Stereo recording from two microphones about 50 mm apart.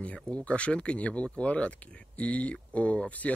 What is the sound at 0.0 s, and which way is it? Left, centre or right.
Speech, left.